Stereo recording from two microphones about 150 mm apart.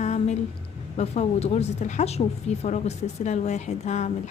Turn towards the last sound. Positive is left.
turn(degrees=50)  # may be behind; listen again after turning